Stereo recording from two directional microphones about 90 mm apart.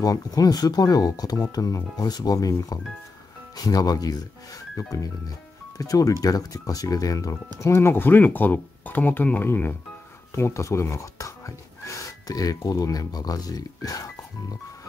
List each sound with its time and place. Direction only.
0.0 s speech: 45° left (ahead or behind)
7.6 s speech: 25° left (ahead or behind)